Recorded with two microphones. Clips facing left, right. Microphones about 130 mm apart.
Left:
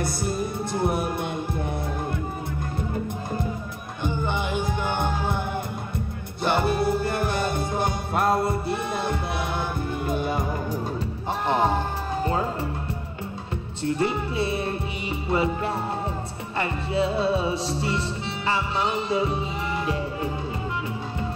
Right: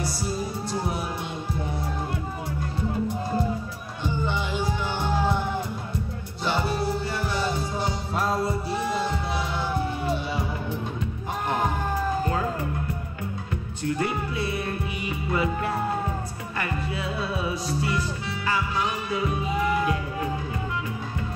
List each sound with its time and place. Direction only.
0.0 s music: 55° left (ahead or behind)
4.2 s music: 55° left (ahead or behind)
6.4 s music: 55° left (ahead or behind)
11.4 s music: 30° left (ahead or behind)
13.8 s music: 25° left (ahead or behind)